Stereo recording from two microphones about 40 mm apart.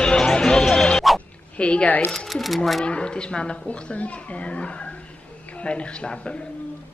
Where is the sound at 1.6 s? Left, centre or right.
Left.